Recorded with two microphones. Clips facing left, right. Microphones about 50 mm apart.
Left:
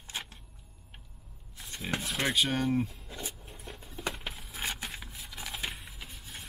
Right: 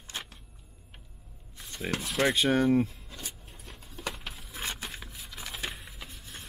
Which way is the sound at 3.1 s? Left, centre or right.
Centre.